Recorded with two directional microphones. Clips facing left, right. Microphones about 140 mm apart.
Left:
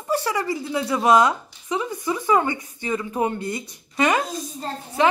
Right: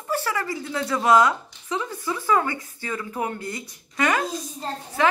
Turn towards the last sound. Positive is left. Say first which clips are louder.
# left 2 dB
turn(degrees=20)  # may be behind; listen again after turning